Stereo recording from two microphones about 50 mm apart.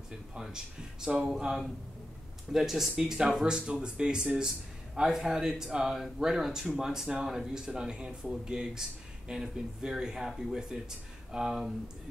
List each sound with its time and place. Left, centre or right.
1.0 s speech: centre
2.5 s speech: centre